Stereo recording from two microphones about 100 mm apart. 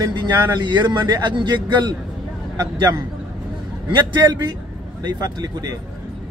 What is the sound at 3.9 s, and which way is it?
A man's voice, 45° right (ahead or behind).